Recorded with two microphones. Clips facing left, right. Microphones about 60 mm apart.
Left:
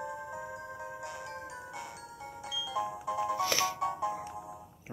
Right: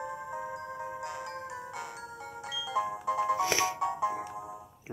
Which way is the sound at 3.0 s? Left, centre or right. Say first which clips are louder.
Right 5 dB; right.